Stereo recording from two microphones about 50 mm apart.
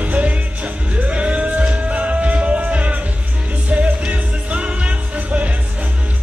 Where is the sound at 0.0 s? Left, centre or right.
Right.